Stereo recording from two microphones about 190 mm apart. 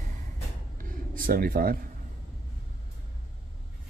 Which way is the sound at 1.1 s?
50° right (ahead or behind).